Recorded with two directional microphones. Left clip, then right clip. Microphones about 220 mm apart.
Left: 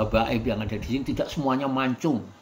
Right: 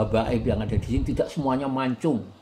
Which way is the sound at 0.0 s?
10° right (ahead or behind).